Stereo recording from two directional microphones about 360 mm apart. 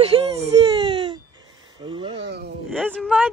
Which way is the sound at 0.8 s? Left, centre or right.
Centre.